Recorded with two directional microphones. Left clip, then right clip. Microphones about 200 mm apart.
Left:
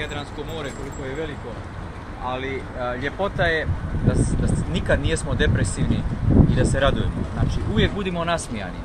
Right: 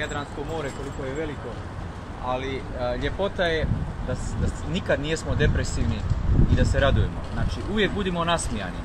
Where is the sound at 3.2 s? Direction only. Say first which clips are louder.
Left 3 dB; 25° right (ahead or behind).